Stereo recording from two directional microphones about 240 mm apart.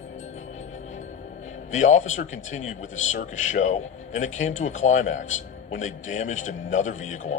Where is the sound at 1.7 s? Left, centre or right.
Left.